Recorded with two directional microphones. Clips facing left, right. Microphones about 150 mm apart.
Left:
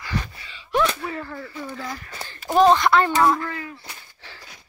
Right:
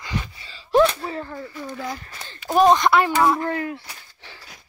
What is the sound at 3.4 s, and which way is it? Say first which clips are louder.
Speech: right 7 dB; 55° right (ahead or behind).